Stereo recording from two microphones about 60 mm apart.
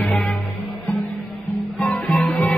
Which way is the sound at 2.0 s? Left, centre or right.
Centre.